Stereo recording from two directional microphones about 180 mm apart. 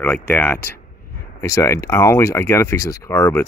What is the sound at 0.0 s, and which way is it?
Speech, 10° left (ahead or behind).